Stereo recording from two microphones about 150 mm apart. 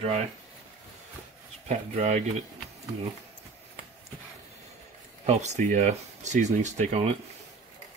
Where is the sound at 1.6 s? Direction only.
45° right (ahead or behind).